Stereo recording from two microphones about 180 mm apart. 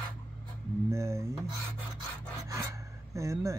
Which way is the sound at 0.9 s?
15° right (ahead or behind).